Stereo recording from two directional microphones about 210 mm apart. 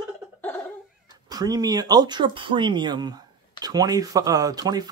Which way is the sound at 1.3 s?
20° right (ahead or behind).